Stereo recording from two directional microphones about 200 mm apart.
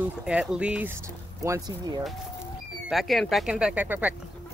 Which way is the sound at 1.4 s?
20° right (ahead or behind).